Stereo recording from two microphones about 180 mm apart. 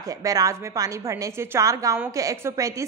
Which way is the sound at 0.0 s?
20° right (ahead or behind).